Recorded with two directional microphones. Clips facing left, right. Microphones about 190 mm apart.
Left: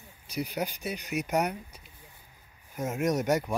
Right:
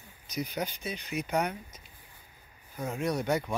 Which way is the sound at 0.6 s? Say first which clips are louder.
Left 2 dB; 40° left (ahead or behind).